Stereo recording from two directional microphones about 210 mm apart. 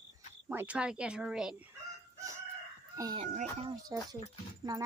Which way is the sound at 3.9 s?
15° right (ahead or behind).